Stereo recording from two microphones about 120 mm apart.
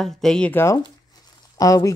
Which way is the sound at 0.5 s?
20° left (ahead or behind).